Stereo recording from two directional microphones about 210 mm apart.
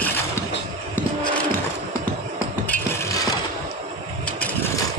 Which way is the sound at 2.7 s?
15° left (ahead or behind).